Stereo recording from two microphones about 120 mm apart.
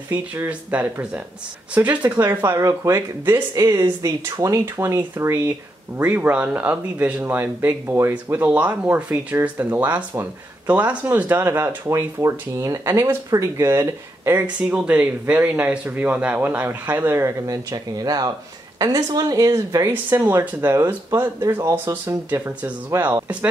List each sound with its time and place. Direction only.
0.1 s speech: 15° right (ahead or behind)
14.4 s speech: 10° right (ahead or behind)